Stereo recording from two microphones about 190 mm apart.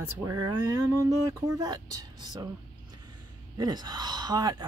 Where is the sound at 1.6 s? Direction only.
20° right (ahead or behind).